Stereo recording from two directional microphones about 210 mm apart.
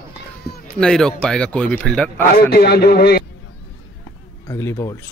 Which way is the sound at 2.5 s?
50° left (ahead or behind).